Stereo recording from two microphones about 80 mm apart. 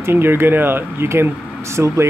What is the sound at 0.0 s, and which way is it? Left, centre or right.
Speech, right.